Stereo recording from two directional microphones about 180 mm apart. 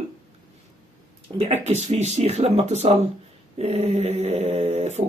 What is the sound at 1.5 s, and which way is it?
A woman's voice, 40° right (ahead or behind).